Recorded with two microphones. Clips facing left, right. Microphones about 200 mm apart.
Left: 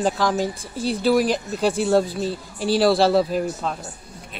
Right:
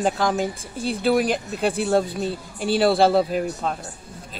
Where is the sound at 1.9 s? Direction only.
5° left (ahead or behind).